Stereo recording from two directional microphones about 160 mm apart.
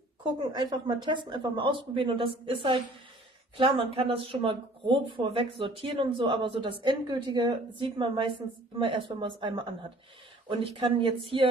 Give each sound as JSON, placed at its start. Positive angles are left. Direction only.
{"t": 0.4, "sound": "speech", "side_deg": -25}
{"t": 10.6, "sound": "speech", "side_deg": -35}